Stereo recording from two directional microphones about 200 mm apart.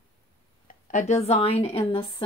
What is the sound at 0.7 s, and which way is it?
A woman's voice, 35° left (ahead or behind).